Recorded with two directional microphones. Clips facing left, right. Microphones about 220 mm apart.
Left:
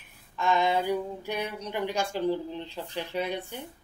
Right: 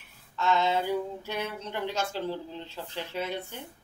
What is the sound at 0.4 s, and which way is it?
Speech, 15° left (ahead or behind).